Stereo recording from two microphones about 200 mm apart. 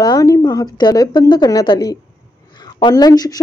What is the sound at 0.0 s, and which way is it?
A woman's voice, 20° left (ahead or behind).